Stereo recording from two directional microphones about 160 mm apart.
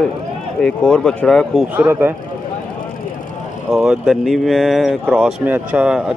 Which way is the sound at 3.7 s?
5° right (ahead or behind).